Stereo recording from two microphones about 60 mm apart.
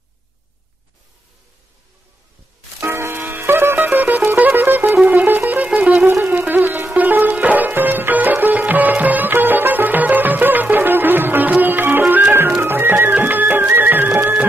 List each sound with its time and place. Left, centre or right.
2.8 s music: right